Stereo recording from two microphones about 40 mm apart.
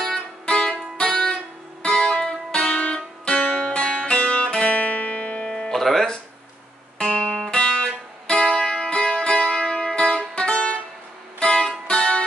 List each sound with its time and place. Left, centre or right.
0.0 s music: left
5.7 s music: centre
7.0 s music: left
9.5 s music: centre